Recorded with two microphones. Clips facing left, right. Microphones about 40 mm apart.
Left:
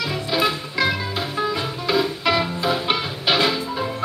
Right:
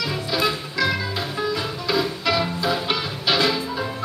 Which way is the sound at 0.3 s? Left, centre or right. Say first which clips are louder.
Left 2 dB; centre.